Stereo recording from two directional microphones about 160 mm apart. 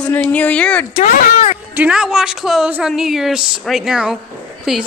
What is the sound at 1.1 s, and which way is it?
Speech, 55° left (ahead or behind).